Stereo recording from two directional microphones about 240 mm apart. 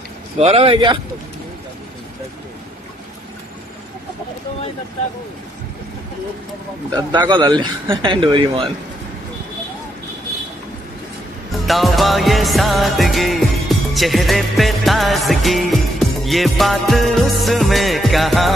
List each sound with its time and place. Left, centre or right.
0.4 s speech: right
7.0 s speech: centre
11.6 s music: centre